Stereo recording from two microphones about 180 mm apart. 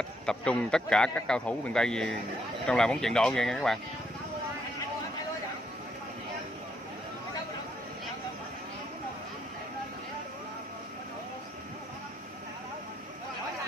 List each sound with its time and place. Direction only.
0.3 s a man's voice: 5° left (ahead or behind)